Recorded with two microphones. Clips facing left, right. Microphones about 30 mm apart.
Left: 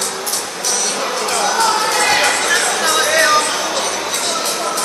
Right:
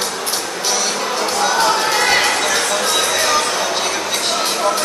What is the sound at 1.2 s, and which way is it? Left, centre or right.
Chatter, centre.